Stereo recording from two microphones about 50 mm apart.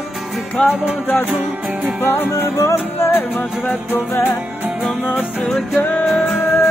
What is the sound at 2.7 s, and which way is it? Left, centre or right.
Music, left.